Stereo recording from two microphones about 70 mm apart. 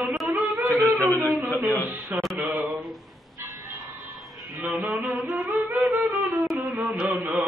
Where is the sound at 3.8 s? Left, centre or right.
Centre.